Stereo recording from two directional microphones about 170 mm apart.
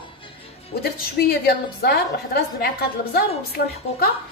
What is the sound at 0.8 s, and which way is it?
A woman's voice, 65° left (ahead or behind).